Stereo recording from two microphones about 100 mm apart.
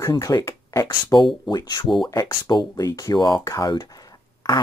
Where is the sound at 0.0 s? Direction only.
35° left (ahead or behind).